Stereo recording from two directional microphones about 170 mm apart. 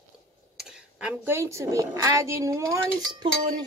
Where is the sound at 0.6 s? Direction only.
5° right (ahead or behind).